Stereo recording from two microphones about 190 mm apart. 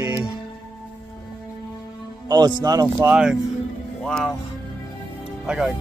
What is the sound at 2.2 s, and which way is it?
Speech, 20° right (ahead or behind).